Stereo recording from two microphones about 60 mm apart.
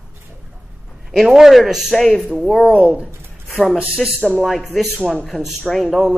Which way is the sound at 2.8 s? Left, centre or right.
Centre.